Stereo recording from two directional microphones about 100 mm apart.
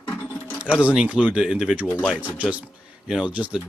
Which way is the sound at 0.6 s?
10° right (ahead or behind).